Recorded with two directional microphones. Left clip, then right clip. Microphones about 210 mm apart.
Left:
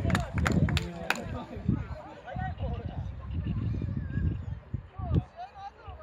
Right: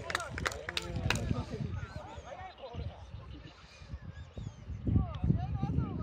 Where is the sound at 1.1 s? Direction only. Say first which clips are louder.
Left 4 dB; 40° left (ahead or behind).